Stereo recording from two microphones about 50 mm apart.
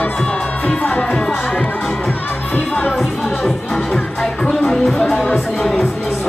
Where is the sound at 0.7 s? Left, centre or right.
Left.